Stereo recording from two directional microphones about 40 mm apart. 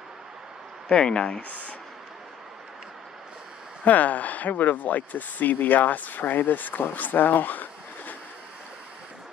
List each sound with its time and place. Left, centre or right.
0.8 s speech: left
3.8 s speech: left